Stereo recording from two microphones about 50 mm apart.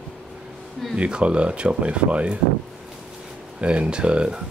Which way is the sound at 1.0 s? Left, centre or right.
Right.